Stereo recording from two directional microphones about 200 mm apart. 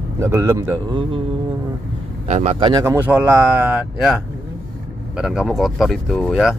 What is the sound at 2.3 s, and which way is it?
Speech, 35° right (ahead or behind).